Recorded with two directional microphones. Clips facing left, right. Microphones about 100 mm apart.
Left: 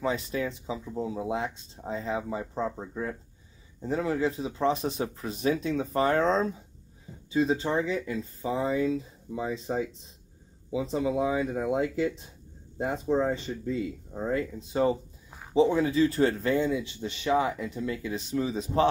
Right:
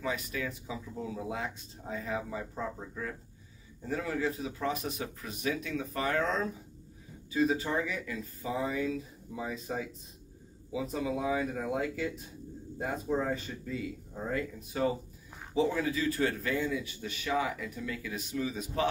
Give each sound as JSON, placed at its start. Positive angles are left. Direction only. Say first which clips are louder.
{"t": 0.0, "sound": "speech", "louder": "left 6 dB", "side_deg": 30}